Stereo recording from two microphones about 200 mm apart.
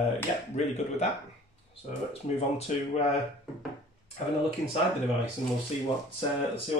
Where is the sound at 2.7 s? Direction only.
35° left (ahead or behind).